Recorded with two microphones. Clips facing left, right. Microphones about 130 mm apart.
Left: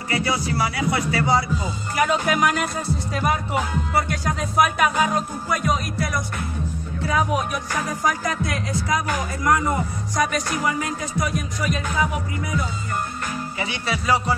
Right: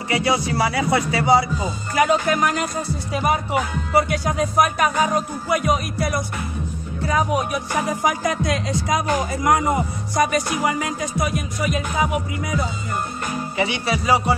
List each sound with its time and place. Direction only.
0.1 s music: 15° right (ahead or behind)
1.1 s speech: 15° right (ahead or behind)
2.2 s music: 5° left (ahead or behind)
7.7 s speech: 10° right (ahead or behind)
10.1 s music: 5° right (ahead or behind)
11.1 s speech: 10° right (ahead or behind)
13.8 s speech: 5° right (ahead or behind)